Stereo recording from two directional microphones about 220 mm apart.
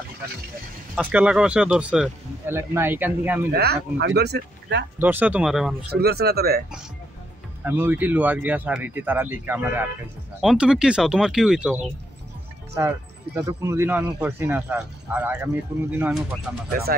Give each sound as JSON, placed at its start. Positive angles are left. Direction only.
{"t": 0.9, "sound": "speech", "side_deg": -5}
{"t": 3.5, "sound": "speech", "side_deg": -45}
{"t": 5.0, "sound": "speech", "side_deg": -10}
{"t": 5.9, "sound": "speech", "side_deg": -45}
{"t": 7.6, "sound": "speech", "side_deg": -10}